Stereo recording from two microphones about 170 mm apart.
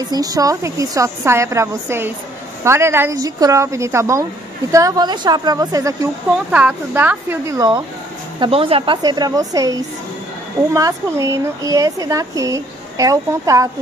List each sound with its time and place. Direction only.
0.0 s a woman's voice: 20° right (ahead or behind)
6.3 s a woman's voice: 10° right (ahead or behind)
8.4 s speech: 30° right (ahead or behind)